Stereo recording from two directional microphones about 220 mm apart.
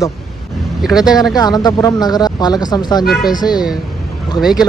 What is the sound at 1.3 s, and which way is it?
Speech, 20° left (ahead or behind).